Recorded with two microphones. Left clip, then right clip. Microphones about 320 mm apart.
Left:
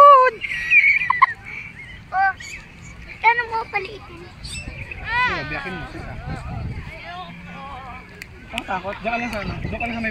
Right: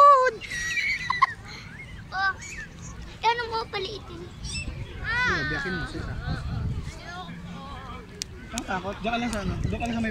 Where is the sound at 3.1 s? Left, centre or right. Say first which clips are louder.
Left 7 dB; centre.